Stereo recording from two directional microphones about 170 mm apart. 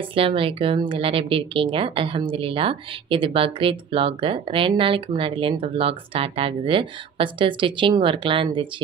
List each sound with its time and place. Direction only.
0.1 s a woman's voice: 35° right (ahead or behind)